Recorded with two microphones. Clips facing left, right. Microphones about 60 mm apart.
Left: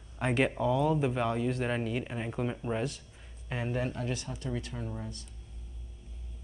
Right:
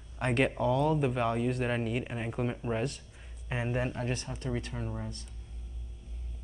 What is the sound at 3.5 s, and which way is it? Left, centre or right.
Speech, right.